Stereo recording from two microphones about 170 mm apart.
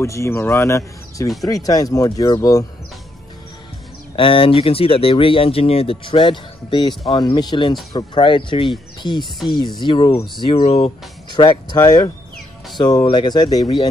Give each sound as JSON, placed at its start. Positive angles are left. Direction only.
{"t": 0.0, "sound": "speech", "side_deg": 15}
{"t": 4.2, "sound": "speech", "side_deg": 30}
{"t": 10.4, "sound": "speech", "side_deg": 35}
{"t": 11.3, "sound": "speech", "side_deg": 30}